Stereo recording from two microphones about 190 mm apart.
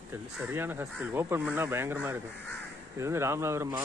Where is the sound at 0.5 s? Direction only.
10° right (ahead or behind).